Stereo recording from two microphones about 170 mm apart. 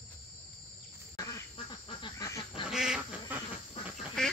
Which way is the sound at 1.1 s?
25° left (ahead or behind).